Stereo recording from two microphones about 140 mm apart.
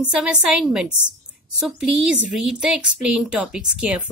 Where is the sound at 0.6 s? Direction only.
5° right (ahead or behind).